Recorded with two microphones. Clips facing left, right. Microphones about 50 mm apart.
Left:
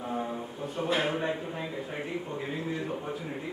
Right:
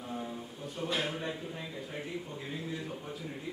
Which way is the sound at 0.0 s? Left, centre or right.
Left.